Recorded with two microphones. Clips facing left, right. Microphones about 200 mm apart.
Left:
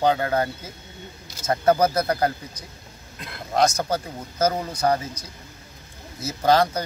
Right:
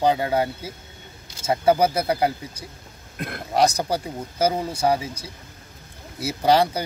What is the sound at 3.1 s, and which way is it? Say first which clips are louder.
Speech: right 8 dB; 55° right (ahead or behind).